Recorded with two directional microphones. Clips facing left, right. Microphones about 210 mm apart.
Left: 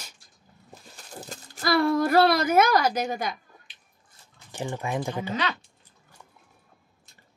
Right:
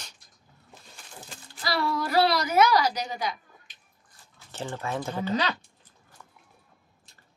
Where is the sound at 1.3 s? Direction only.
50° left (ahead or behind).